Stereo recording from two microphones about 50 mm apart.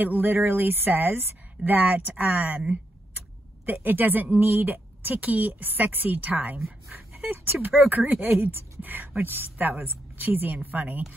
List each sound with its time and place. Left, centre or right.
0.0 s speech: right
3.2 s a sound: right
4.5 s speech: right
6.9 s speech: right